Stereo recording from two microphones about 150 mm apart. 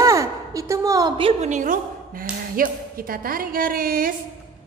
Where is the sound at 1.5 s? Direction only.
60° right (ahead or behind).